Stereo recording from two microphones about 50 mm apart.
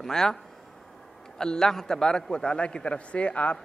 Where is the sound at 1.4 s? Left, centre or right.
Centre.